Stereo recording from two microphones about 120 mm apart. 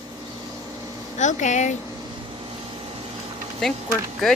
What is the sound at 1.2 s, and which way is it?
Speech, 90° left.